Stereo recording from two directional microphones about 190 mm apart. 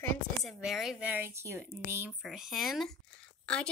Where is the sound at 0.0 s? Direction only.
Centre (ahead or behind).